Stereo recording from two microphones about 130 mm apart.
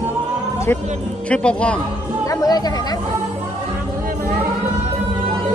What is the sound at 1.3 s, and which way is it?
Speech, 10° left (ahead or behind).